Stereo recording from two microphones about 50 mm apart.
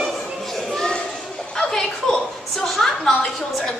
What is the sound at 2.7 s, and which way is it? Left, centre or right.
Speech, centre.